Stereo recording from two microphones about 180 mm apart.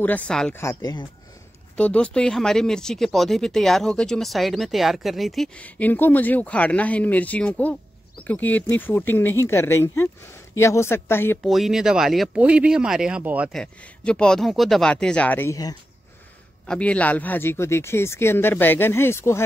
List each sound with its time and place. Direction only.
0.0 s speech: 5° left (ahead or behind)
0.6 s speech: 20° left (ahead or behind)
1.8 s speech: 5° left (ahead or behind)
11.4 s speech: centre (ahead or behind)
13.6 s speech: 5° left (ahead or behind)
16.6 s speech: 5° left (ahead or behind)